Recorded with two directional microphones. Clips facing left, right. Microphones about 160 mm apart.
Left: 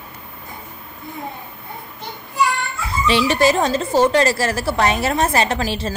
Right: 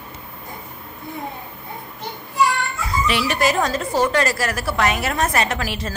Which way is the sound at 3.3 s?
30° left (ahead or behind).